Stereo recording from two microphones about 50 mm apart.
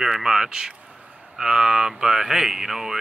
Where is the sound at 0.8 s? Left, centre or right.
Centre.